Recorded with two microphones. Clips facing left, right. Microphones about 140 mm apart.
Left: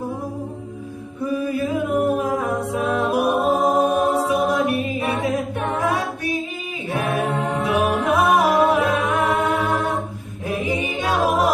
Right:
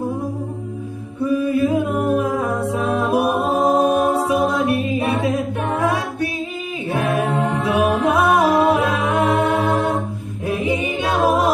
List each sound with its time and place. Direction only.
1.7 s music: 30° right (ahead or behind)
6.9 s a capella: 35° right (ahead or behind)
7.6 s music: 35° right (ahead or behind)
9.1 s mantra: 30° right (ahead or behind)
11.2 s a capella: 30° right (ahead or behind)